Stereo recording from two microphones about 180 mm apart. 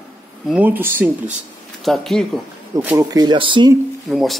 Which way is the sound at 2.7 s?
15° right (ahead or behind).